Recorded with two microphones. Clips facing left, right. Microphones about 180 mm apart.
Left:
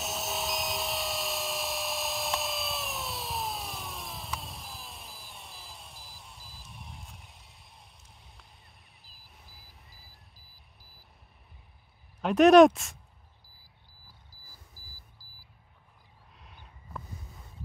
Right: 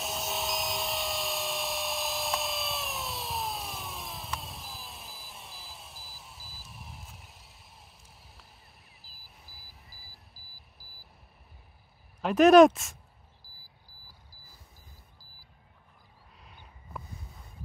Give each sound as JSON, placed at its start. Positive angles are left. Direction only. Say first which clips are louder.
{"t": 0.0, "sound": "dental drill", "louder": "even", "side_deg": 0}
{"t": 9.0, "sound": "beep", "louder": "left 1 dB", "side_deg": 0}
{"t": 12.2, "sound": "speech", "louder": "even", "side_deg": 0}
{"t": 13.4, "sound": "a sound", "louder": "right 2 dB", "side_deg": 0}
{"t": 13.9, "sound": "beep", "louder": "right 2 dB", "side_deg": 0}
{"t": 14.3, "sound": "camera", "louder": "right 1 dB", "side_deg": 0}
{"t": 15.2, "sound": "single-lens reflex camera", "louder": "right 1 dB", "side_deg": 0}
{"t": 16.3, "sound": "a sound", "louder": "even", "side_deg": 0}